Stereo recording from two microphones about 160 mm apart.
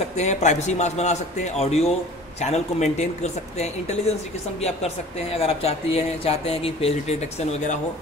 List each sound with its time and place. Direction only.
0.2 s a man's voice: 45° left (ahead or behind)
4.6 s speech: 40° left (ahead or behind)